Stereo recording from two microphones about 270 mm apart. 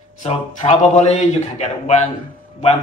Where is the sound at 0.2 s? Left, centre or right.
Left.